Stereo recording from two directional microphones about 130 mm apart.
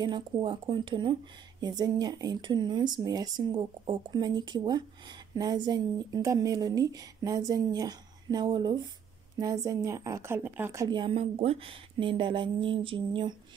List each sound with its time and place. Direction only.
0.0 s speech: 35° right (ahead or behind); by 10.9 s 20° right (ahead or behind)
10.9 s speech: 40° right (ahead or behind)